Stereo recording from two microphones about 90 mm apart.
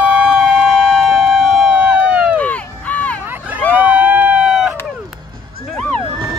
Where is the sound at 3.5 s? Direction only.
20° right (ahead or behind); by 4.8 s 5° right (ahead or behind).